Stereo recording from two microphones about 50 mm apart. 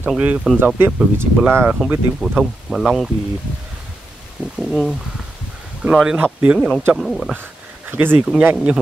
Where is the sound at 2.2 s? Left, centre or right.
Centre.